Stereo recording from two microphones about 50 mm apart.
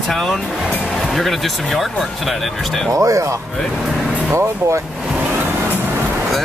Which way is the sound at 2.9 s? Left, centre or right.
Right.